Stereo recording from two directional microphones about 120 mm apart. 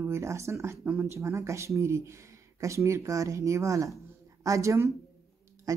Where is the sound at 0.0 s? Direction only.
25° right (ahead or behind).